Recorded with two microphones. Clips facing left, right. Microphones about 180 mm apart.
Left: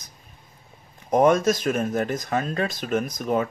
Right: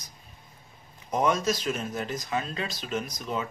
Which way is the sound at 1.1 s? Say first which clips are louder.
Left 7 dB; 55° left (ahead or behind).